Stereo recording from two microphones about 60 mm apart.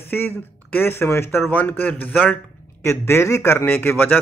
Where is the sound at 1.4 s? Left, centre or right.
Left.